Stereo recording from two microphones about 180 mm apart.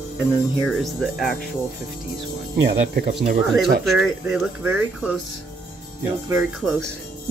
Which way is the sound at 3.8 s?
Centre (ahead or behind).